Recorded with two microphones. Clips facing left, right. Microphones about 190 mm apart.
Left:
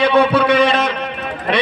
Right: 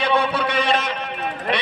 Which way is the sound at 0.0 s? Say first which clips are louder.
Left 7 dB; 90° left.